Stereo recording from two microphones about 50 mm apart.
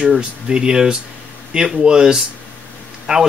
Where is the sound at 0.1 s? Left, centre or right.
Centre.